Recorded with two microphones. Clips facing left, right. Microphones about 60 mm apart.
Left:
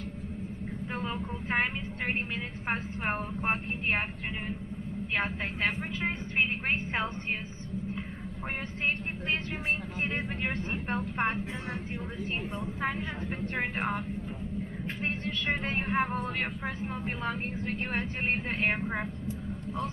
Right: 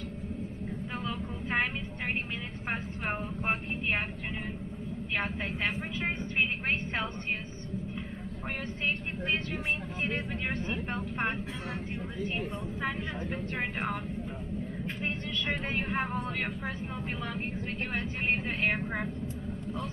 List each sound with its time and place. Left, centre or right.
1.0 s vehicle: left
2.7 s vehicle: left
5.1 s a woman's voice: left
10.0 s speech: left
12.4 s a woman's voice: left
15.0 s a woman's voice: left
15.9 s speech: left